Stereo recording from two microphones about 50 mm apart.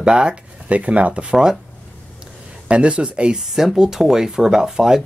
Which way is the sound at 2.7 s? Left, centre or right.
Right.